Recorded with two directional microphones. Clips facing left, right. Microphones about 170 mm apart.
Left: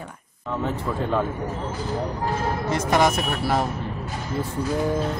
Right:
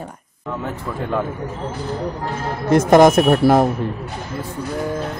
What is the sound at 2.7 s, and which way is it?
Speech, 50° right (ahead or behind).